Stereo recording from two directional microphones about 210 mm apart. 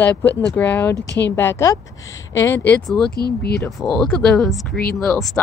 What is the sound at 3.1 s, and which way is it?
Speech, 50° left (ahead or behind).